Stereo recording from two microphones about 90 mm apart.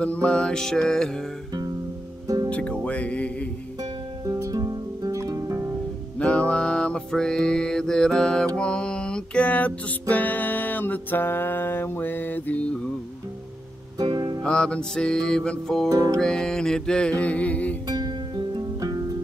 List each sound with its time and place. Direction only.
0.0 s music: 15° left (ahead or behind)
2.2 s music: 40° right (ahead or behind)
2.5 s music: 10° left (ahead or behind)
4.3 s music: 40° right (ahead or behind)
6.1 s music: 15° left (ahead or behind)
13.9 s music: 50° right (ahead or behind)
14.4 s music: 10° left (ahead or behind)
15.9 s music: 35° right (ahead or behind)
16.2 s music: 5° left (ahead or behind)
17.8 s music: 50° right (ahead or behind)